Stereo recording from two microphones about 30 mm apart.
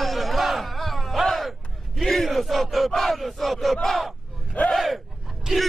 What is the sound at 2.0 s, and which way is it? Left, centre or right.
Battle cry, centre.